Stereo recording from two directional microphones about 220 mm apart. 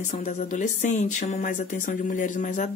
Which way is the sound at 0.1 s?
30° left (ahead or behind).